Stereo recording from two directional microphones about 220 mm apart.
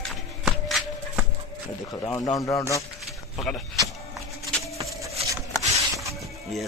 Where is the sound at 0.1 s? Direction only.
Centre (ahead or behind).